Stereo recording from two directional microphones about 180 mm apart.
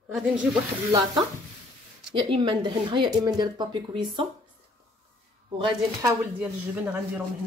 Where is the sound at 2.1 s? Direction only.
25° right (ahead or behind).